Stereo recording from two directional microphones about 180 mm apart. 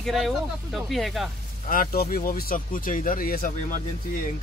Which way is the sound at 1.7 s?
55° left (ahead or behind).